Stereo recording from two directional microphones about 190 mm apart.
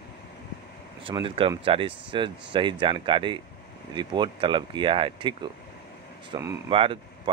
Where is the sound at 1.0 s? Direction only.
25° right (ahead or behind).